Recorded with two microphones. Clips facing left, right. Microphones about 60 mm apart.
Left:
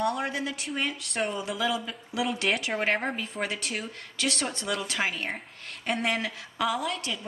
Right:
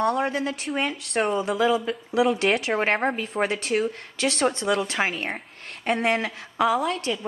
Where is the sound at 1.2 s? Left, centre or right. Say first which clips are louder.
Right 7 dB; right.